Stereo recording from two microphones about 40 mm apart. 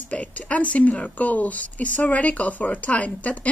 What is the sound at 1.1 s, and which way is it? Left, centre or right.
Speech, left.